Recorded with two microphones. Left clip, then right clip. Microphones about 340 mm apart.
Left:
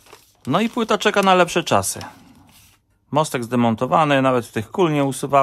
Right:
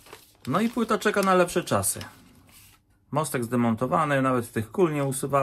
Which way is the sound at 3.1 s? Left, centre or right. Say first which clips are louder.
Left 7 dB; centre.